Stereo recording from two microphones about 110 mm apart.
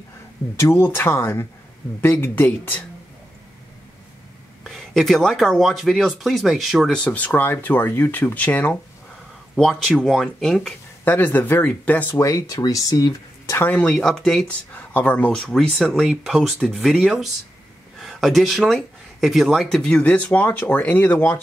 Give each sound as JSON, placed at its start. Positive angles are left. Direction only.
{"t": 0.6, "sound": "speech", "side_deg": 25}
{"t": 4.6, "sound": "speech", "side_deg": 0}
{"t": 7.1, "sound": "speech", "side_deg": 15}
{"t": 9.6, "sound": "speech", "side_deg": 5}
{"t": 11.1, "sound": "speech", "side_deg": 20}
{"t": 12.2, "sound": "speech", "side_deg": 30}
{"t": 13.6, "sound": "speech", "side_deg": 15}
{"t": 14.5, "sound": "speech", "side_deg": 15}
{"t": 15.4, "sound": "speech", "side_deg": 0}